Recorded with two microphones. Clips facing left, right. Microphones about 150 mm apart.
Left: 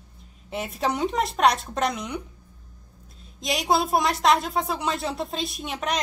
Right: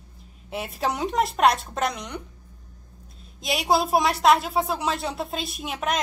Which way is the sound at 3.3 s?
Centre (ahead or behind).